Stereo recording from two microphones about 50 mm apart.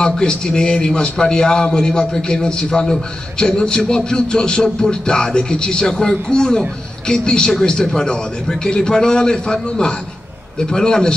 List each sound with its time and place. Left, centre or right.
0.0 s a man's voice: centre